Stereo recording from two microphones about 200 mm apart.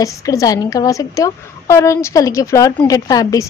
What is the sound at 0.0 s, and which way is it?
A woman's voice, 15° left (ahead or behind).